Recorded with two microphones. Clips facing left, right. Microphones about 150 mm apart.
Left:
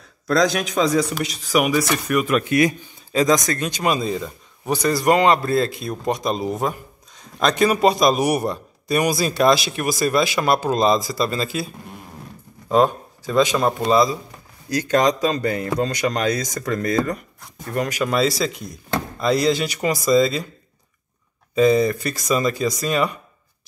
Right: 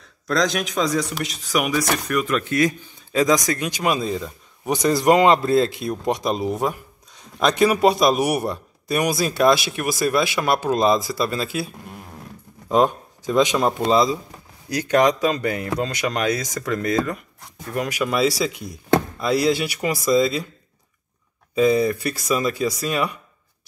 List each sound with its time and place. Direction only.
0.3 s speech: centre (ahead or behind)
3.1 s speech: 5° right (ahead or behind)
5.0 s speech: 20° right (ahead or behind)
5.9 s a man's voice: 10° right (ahead or behind)
12.7 s a man's voice: 15° right (ahead or behind)
21.5 s a man's voice: 5° right (ahead or behind)